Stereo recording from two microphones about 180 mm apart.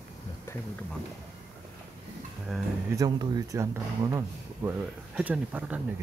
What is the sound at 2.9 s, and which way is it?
Speech, 20° right (ahead or behind).